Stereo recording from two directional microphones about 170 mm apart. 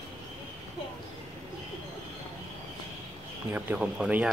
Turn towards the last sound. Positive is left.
turn(degrees=-5)  # may be behind; listen again after turning